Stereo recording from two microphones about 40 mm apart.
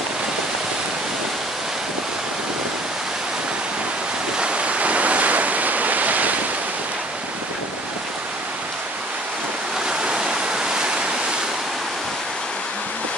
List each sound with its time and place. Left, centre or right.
4.4 s waves: right
9.8 s waves: right